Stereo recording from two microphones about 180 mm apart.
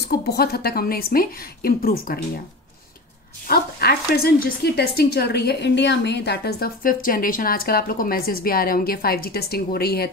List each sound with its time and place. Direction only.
0.0 s speech: 65° left (ahead or behind)
3.4 s speech: 60° left (ahead or behind)